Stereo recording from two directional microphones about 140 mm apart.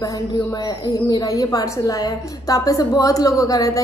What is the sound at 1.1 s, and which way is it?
A woman's voice, 25° left (ahead or behind).